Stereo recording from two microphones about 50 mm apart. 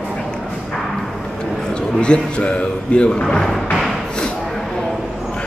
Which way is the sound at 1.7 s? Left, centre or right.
Centre.